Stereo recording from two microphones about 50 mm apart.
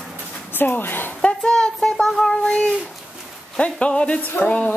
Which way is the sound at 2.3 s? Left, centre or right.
Left.